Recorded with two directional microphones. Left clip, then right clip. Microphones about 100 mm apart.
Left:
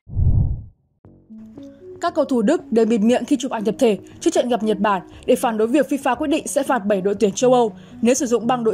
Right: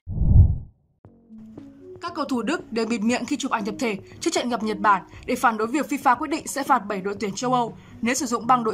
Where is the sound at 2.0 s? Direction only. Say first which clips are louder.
Left 8 dB; 30° left (ahead or behind).